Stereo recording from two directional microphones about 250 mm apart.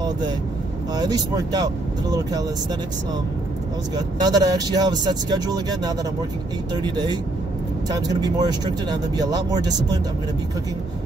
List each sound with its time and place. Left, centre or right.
0.9 s speech: centre
3.9 s speech: centre